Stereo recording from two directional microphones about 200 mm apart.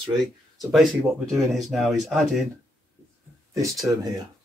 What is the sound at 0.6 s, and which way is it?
Speech, centre (ahead or behind).